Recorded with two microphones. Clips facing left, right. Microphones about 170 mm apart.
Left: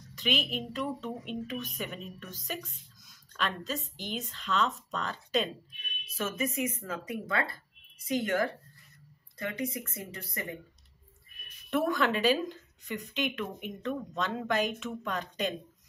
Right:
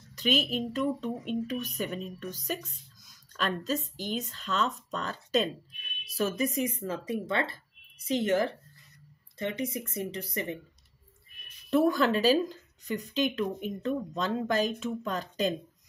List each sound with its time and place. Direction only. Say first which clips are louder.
0.1 s speech: right 4 dB; 40° right (ahead or behind); by 10.6 s 25° right (ahead or behind)
11.7 s speech: right 4 dB; 35° right (ahead or behind)